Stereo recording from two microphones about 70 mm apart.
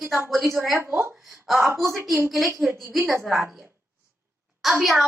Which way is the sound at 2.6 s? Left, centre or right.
Centre.